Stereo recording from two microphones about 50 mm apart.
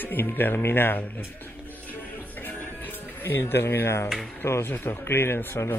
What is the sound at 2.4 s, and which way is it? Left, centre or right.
Music, left.